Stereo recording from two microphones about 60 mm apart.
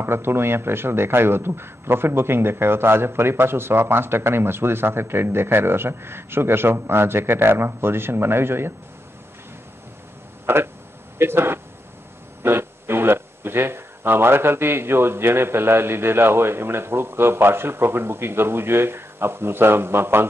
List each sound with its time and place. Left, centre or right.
0.0 s speech: right
10.4 s speech: right